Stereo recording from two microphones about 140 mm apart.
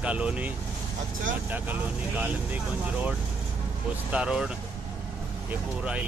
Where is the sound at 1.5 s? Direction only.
10° right (ahead or behind).